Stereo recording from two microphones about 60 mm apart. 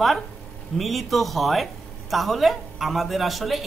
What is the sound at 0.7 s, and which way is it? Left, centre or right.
A woman's voice, centre.